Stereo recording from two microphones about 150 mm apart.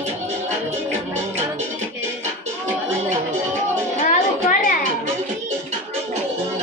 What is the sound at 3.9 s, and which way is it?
Music, 60° left (ahead or behind).